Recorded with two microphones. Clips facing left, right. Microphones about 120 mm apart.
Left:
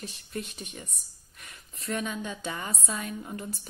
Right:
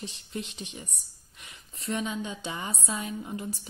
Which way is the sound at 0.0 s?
25° right (ahead or behind).